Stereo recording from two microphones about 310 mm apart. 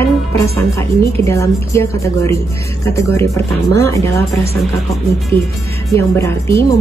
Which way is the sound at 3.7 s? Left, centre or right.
Centre.